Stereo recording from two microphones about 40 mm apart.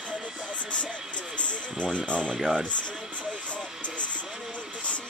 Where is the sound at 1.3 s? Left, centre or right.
Left.